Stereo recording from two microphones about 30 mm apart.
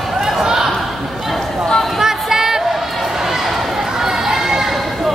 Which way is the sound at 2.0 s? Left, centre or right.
Centre.